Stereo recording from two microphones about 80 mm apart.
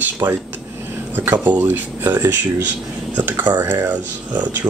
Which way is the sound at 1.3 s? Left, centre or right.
Right.